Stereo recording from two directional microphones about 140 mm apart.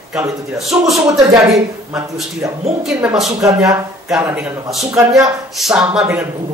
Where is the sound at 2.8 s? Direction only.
Centre (ahead or behind).